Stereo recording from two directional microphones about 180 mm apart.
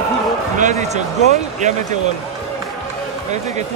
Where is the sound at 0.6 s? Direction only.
40° right (ahead or behind).